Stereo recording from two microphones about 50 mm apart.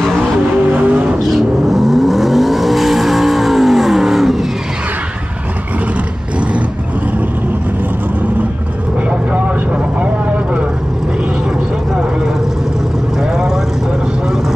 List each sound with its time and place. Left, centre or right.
0.2 s music: right
1.3 s vehicle: centre